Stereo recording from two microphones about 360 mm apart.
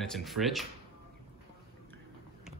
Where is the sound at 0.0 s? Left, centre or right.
Centre.